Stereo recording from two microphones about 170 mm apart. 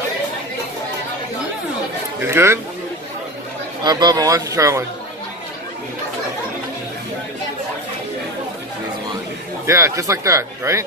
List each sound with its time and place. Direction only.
2.2 s speech: 15° right (ahead or behind)
3.8 s speech: 25° right (ahead or behind)
9.7 s speech: 15° right (ahead or behind)